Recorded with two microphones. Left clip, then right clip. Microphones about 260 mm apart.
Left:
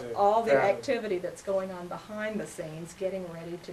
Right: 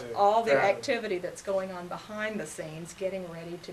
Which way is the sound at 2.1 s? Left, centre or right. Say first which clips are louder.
Even; centre.